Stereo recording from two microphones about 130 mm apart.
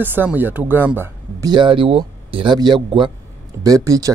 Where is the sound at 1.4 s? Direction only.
35° right (ahead or behind).